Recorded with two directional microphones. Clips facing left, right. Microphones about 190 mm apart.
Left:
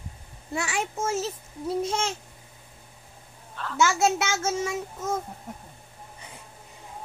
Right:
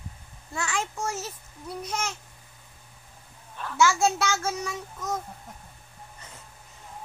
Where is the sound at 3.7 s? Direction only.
20° left (ahead or behind).